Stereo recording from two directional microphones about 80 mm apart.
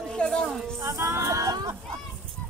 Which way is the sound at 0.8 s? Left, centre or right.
Right.